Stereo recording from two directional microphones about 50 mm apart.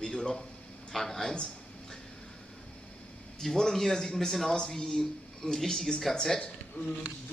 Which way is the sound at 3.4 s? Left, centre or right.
Centre.